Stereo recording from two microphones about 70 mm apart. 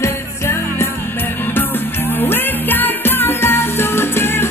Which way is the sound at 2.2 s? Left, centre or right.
Left.